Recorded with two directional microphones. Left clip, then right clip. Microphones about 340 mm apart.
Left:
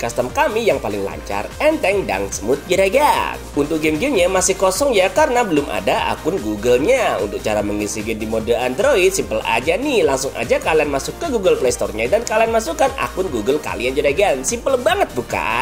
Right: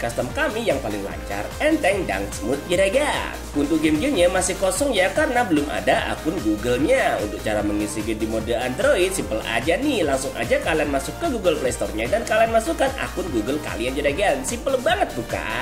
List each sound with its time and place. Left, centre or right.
0.4 s speech: centre